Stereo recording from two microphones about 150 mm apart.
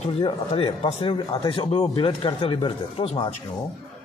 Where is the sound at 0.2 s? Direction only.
40° left (ahead or behind).